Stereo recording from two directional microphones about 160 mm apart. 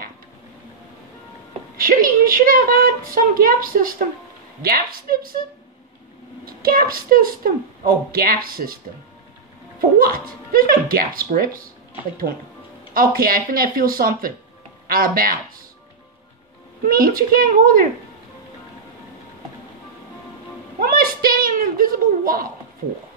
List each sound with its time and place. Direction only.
1.8 s a woman's voice: 65° right (ahead or behind)
6.4 s a woman's voice: 65° right (ahead or behind)
9.8 s a woman's voice: 65° right (ahead or behind)
12.9 s a woman's voice: 65° right (ahead or behind)
16.8 s a woman's voice: 65° right (ahead or behind)
20.8 s a child's voice: 65° right (ahead or behind)